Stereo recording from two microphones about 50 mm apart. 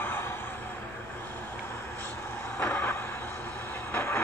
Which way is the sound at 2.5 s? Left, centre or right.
Left.